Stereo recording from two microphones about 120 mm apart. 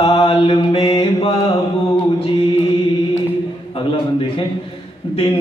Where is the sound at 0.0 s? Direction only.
50° left (ahead or behind).